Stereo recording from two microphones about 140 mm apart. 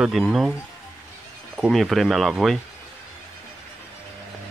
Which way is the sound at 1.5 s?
Centre (ahead or behind).